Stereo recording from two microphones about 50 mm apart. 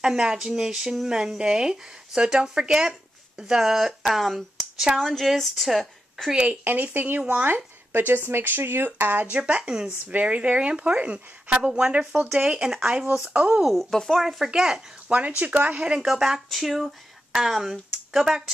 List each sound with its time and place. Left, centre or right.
0.0 s a woman's voice: centre
5.0 s a woman's voice: centre
6.3 s speech: right
6.6 s speech: right
9.4 s speech: right
13.7 s speech: centre
14.2 s speech: centre
15.0 s speech: right; by 18.4 s centre